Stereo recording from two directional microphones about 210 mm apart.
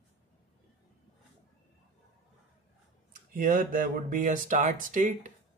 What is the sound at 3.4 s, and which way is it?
Speech, 40° right (ahead or behind).